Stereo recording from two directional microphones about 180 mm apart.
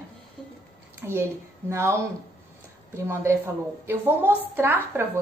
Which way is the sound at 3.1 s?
15° right (ahead or behind).